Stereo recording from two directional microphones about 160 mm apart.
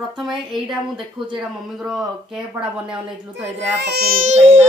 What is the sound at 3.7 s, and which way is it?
Speech, 90° right.